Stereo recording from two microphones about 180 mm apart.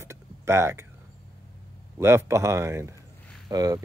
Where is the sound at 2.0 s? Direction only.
15° right (ahead or behind).